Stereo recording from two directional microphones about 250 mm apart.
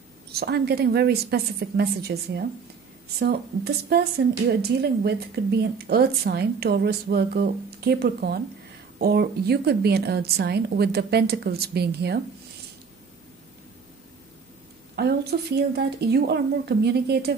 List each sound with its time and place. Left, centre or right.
0.3 s speech: right
15.0 s speech: right